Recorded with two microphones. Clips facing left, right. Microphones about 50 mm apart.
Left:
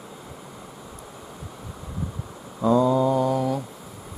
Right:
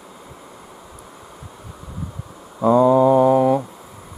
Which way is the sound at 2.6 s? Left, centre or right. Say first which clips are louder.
Right 6 dB; right.